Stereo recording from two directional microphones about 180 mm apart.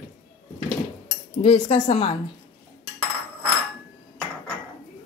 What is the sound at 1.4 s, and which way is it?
Speech, 35° left (ahead or behind).